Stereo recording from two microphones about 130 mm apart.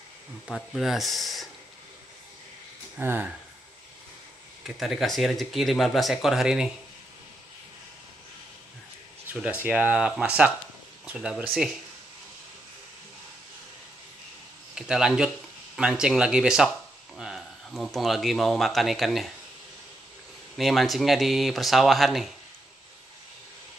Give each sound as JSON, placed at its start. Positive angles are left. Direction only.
{"t": 0.5, "sound": "speech", "side_deg": 0}
{"t": 3.0, "sound": "speech", "side_deg": -15}
{"t": 4.6, "sound": "speech", "side_deg": -5}
{"t": 9.3, "sound": "speech", "side_deg": -10}
{"t": 14.8, "sound": "speech", "side_deg": -5}
{"t": 20.5, "sound": "speech", "side_deg": 0}